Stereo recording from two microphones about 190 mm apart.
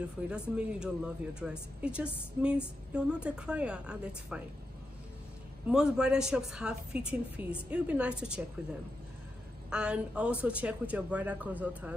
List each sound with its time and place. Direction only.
0.3 s a woman's voice: 5° right (ahead or behind)
5.7 s a woman's voice: 5° right (ahead or behind)